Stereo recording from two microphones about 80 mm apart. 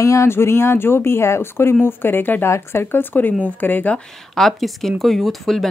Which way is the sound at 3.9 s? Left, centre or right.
Centre.